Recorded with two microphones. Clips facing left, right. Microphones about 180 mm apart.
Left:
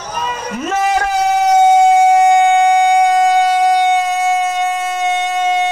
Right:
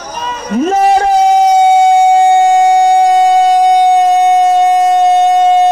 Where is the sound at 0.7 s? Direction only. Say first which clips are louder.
Right 6 dB; 35° right (ahead or behind).